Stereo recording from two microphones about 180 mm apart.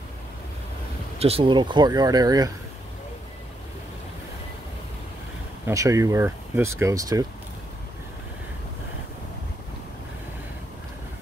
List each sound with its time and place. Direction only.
1.2 s speech: 30° right (ahead or behind)
5.7 s speech: 15° right (ahead or behind)